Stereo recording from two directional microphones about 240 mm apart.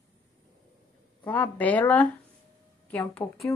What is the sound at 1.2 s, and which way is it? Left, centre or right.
A woman's voice, centre.